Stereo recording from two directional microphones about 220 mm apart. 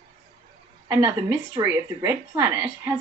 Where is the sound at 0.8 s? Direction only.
15° right (ahead or behind).